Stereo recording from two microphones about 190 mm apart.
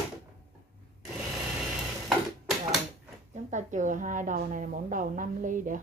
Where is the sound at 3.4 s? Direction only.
40° right (ahead or behind).